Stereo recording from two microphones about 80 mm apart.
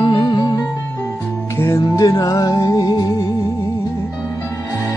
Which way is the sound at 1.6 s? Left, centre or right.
Left.